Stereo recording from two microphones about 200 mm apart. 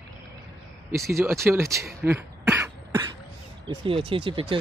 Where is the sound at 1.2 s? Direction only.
10° right (ahead or behind).